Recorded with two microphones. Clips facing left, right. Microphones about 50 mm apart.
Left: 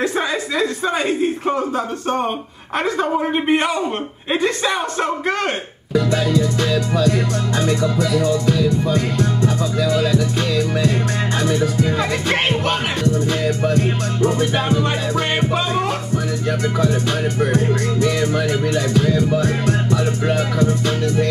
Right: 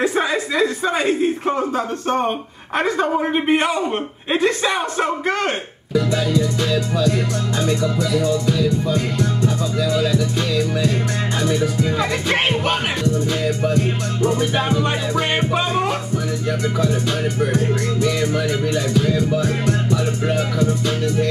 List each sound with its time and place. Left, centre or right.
0.0 s speech: centre
7.0 s music: left
11.3 s music: left
12.0 s speech: centre
13.0 s music: left
14.7 s music: centre
16.8 s music: left